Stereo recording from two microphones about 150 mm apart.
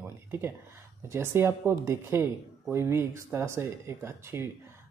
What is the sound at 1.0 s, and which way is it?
Speech, 15° right (ahead or behind).